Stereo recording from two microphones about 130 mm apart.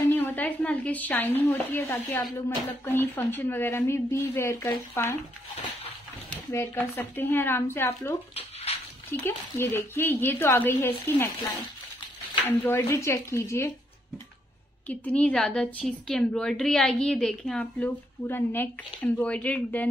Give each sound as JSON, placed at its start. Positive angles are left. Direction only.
{"t": 0.1, "sound": "speech", "side_deg": 15}
{"t": 6.3, "sound": "speech", "side_deg": 15}
{"t": 8.4, "sound": "bathtub", "side_deg": 50}
{"t": 9.2, "sound": "speech", "side_deg": 20}
{"t": 14.9, "sound": "a woman's voice", "side_deg": 10}